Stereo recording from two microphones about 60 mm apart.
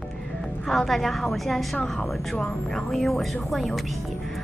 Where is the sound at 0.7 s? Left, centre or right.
Centre.